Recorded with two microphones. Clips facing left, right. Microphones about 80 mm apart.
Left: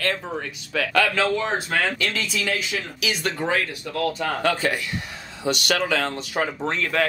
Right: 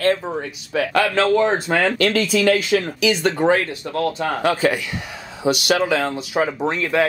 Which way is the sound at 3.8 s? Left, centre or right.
Right.